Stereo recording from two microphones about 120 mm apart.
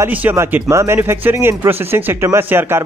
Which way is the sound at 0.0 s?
15° right (ahead or behind).